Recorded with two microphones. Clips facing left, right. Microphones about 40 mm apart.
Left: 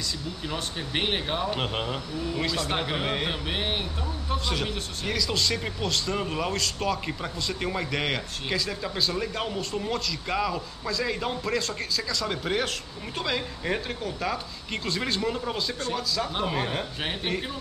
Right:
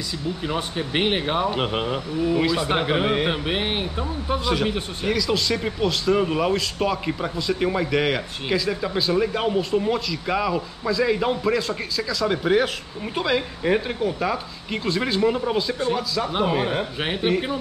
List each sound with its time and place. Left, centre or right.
0.5 s a man's voice: centre
5.1 s a man's voice: centre